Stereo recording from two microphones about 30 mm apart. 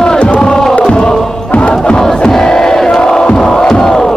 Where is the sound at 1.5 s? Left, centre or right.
Left.